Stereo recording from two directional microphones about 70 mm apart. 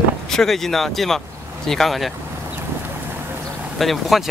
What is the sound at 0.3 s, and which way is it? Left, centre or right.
Speech, centre.